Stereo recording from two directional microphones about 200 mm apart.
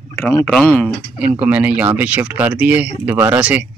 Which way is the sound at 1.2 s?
5° right (ahead or behind).